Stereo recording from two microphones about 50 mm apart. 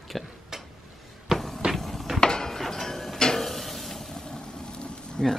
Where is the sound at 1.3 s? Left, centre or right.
Centre.